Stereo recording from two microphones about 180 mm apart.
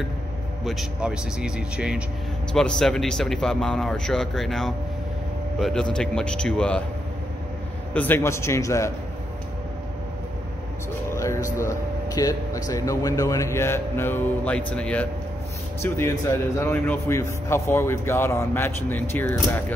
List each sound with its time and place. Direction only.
0.7 s a man's voice: 5° right (ahead or behind)
7.9 s a man's voice: 10° left (ahead or behind)
11.1 s music: 15° left (ahead or behind)
11.6 s a man's voice: 20° left (ahead or behind)